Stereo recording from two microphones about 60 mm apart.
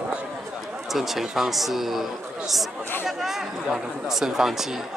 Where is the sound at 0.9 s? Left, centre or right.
Centre.